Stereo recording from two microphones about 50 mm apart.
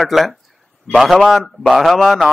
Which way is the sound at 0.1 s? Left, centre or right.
Centre.